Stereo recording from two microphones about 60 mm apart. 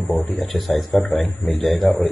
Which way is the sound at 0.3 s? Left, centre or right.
Centre.